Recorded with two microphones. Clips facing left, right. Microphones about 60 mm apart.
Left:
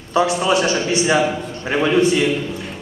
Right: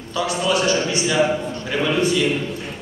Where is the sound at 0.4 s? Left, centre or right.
Left.